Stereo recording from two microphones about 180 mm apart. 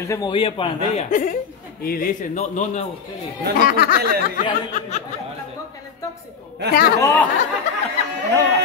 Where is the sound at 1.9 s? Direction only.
50° left (ahead or behind).